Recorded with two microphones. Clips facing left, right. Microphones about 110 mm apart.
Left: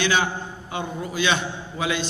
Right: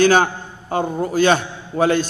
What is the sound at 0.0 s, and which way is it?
A man's voice, 45° right (ahead or behind).